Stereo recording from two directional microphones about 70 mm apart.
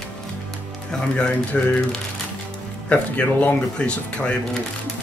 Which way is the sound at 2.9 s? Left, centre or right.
Left.